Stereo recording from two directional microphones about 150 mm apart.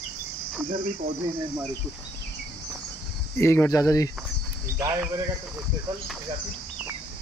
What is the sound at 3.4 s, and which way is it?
Speech, 20° left (ahead or behind).